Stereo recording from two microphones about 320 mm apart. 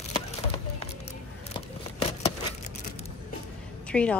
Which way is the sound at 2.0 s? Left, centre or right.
Centre.